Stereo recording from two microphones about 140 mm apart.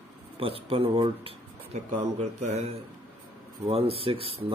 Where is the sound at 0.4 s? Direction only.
40° right (ahead or behind).